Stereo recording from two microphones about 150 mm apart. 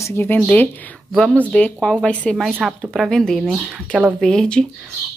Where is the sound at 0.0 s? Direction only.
15° left (ahead or behind).